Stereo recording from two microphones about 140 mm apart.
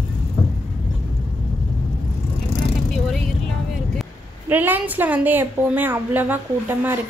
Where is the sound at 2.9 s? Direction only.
Centre (ahead or behind).